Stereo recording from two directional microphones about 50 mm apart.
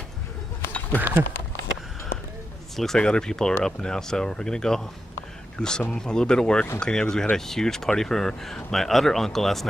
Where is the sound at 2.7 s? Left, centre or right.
Centre.